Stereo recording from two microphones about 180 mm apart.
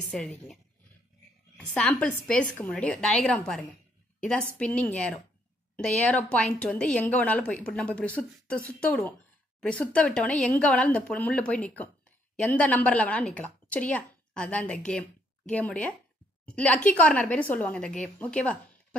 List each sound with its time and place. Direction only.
0.1 s a woman's voice: 5° left (ahead or behind)
1.7 s a woman's voice: 5° left (ahead or behind)